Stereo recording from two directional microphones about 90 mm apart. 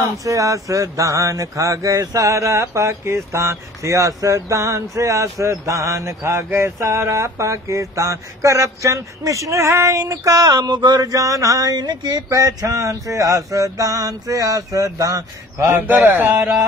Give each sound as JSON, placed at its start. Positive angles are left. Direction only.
{"t": 0.0, "sound": "speech", "side_deg": -40}
{"t": 15.6, "sound": "speech", "side_deg": -25}